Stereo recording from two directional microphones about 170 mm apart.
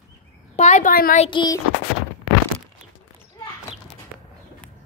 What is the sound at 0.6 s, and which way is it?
Speech, 45° left (ahead or behind).